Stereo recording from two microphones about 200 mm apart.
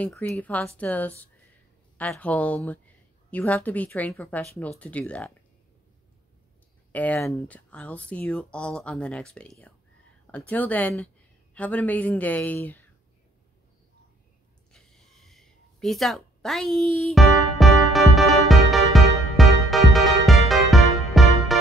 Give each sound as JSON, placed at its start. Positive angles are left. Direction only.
{"t": 0.0, "sound": "speech", "side_deg": 5}
{"t": 6.9, "sound": "speech", "side_deg": 10}
{"t": 14.7, "sound": "a sound", "side_deg": 0}